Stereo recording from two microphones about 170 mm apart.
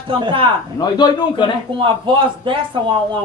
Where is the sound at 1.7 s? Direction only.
30° right (ahead or behind).